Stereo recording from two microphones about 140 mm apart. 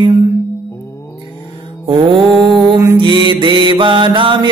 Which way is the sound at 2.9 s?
35° right (ahead or behind).